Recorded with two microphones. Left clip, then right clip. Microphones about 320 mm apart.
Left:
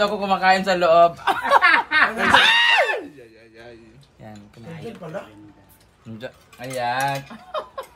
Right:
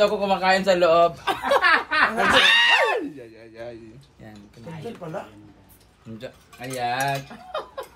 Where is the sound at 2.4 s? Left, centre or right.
Centre.